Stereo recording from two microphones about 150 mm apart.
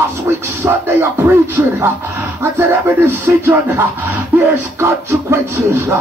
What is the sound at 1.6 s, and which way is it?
Music, 20° right (ahead or behind).